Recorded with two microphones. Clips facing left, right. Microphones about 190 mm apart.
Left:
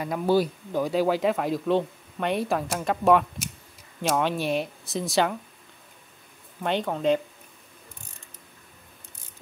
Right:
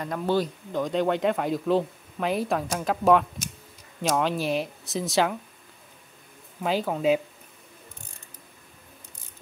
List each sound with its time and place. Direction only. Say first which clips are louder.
0.0 s speech: left 3 dB; 10° left (ahead or behind)
6.6 s speech: right 1 dB; 5° right (ahead or behind)